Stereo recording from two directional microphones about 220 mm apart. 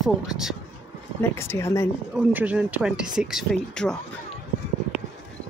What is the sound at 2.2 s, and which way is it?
Speech, 5° right (ahead or behind).